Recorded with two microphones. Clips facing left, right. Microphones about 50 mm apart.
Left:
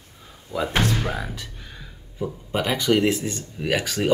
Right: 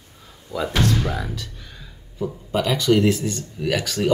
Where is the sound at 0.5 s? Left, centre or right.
Left.